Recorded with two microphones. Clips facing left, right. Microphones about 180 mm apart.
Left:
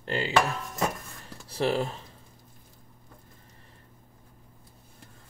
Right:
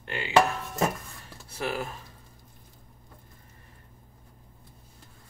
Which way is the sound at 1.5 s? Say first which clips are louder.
Left 5 dB; 30° left (ahead or behind).